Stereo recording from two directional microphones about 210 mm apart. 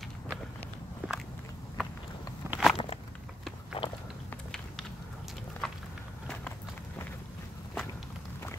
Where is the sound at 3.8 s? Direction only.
25° left (ahead or behind).